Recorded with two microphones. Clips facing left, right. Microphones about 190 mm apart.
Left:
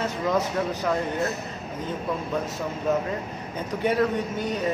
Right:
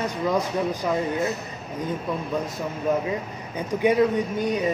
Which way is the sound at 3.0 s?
10° right (ahead or behind).